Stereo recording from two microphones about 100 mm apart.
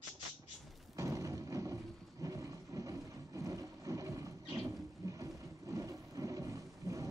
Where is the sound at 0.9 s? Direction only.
35° right (ahead or behind).